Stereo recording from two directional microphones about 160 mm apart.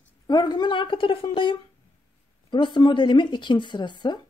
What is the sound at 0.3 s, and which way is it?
Speech, 25° left (ahead or behind).